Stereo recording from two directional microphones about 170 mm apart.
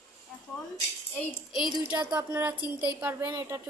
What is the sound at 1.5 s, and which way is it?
A woman's voice, 5° right (ahead or behind).